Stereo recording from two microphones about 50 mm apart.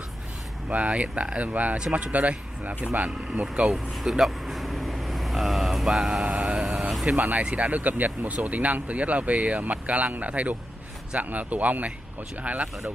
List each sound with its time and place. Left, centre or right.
0.7 s speech: right
3.7 s vehicle: centre
6.2 s vehicle: right
7.2 s speech: right